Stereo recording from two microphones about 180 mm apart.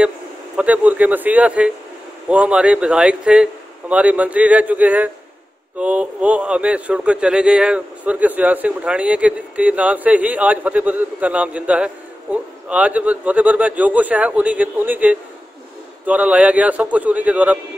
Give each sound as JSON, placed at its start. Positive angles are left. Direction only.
{"t": 0.6, "sound": "a man's voice", "side_deg": -10}